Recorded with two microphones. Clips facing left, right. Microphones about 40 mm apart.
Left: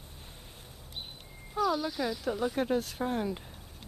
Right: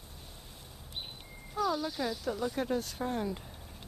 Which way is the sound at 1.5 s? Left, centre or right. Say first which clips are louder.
Left 2 dB; centre.